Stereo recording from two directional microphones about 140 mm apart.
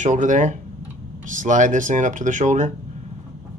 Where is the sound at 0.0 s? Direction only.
60° right (ahead or behind).